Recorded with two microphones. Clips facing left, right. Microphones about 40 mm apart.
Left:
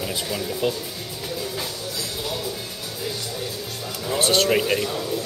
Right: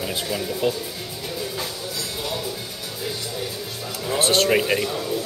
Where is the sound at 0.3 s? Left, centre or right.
Centre.